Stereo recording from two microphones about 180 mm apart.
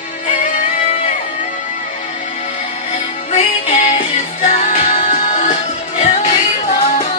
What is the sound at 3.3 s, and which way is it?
Music, 40° left (ahead or behind).